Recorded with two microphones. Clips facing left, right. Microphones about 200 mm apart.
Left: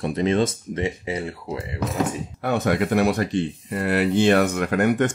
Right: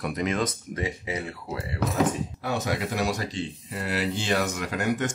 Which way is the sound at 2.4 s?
55° left (ahead or behind).